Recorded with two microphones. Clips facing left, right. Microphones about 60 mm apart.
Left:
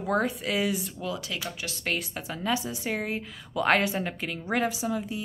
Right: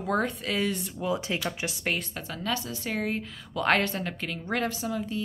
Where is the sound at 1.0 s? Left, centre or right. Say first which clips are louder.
Right 4 dB; right.